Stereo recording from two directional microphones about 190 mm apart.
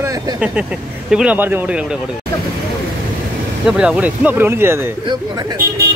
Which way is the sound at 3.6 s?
5° right (ahead or behind).